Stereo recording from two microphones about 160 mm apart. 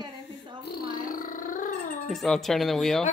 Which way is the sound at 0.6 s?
75° left (ahead or behind).